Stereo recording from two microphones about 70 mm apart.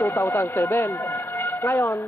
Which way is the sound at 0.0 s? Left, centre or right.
Left.